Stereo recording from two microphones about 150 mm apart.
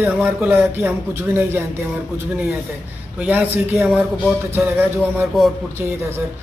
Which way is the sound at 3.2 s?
10° right (ahead or behind).